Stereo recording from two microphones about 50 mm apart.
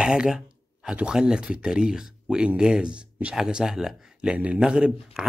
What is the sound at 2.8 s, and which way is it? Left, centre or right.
A man's voice, right.